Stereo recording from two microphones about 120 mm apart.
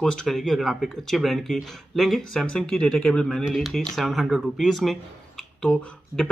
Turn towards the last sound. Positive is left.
turn(degrees=10)  # may be behind; listen again after turning